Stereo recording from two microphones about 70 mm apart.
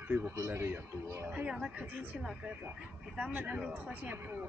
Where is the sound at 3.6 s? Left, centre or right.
Centre.